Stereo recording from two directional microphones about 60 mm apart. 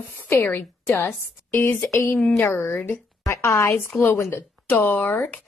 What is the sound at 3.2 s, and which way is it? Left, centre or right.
Speech, left.